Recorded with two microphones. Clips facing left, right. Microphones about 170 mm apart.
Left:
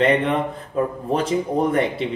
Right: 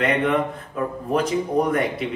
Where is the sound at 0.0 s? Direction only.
30° left (ahead or behind).